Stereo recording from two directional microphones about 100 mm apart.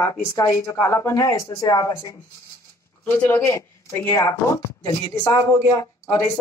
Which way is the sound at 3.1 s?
20° left (ahead or behind).